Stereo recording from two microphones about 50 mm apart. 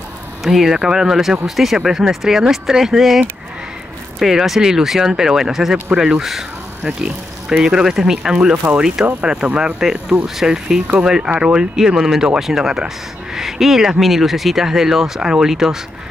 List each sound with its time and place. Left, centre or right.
0.4 s speech: centre